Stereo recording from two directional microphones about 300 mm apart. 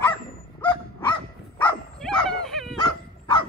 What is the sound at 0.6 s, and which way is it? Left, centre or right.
Dog, centre.